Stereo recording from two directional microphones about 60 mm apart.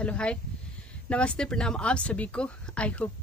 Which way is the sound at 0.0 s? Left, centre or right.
Centre.